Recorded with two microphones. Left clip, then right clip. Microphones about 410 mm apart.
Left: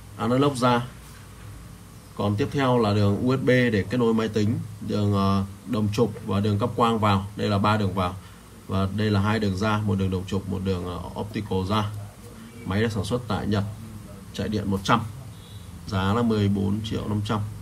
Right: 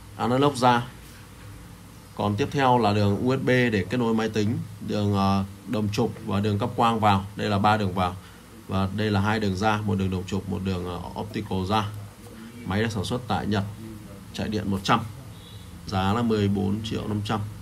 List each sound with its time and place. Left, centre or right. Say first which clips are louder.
0.2 s a man's voice: right 1 dB; centre
2.1 s speech: right 1 dB; centre